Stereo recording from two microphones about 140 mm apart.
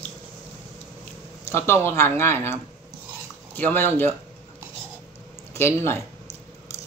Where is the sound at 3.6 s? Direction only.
15° left (ahead or behind).